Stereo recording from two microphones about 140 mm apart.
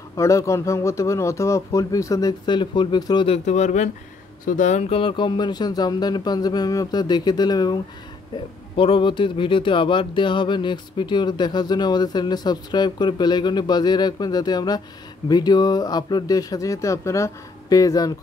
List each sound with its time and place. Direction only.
0.1 s speech: 20° left (ahead or behind)
3.3 s speech: 55° left (ahead or behind)
4.9 s speech: 35° left (ahead or behind)